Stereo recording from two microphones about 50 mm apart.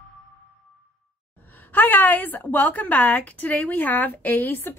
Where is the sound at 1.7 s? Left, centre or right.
Left.